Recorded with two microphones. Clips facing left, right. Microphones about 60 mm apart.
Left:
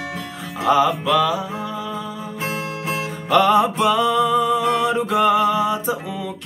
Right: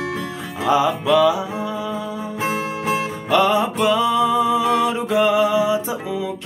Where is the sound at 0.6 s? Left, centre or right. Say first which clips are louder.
Left 1 dB; centre.